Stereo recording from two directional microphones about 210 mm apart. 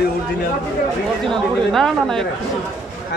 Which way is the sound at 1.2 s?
Centre (ahead or behind).